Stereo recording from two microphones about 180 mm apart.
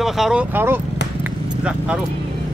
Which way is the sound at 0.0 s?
Centre (ahead or behind).